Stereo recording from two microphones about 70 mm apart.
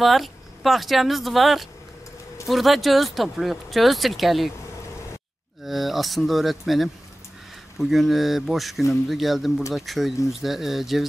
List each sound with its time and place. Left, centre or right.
0.0 s speech: centre
5.7 s speech: centre